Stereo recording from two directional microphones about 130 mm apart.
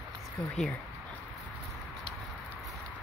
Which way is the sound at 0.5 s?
10° left (ahead or behind).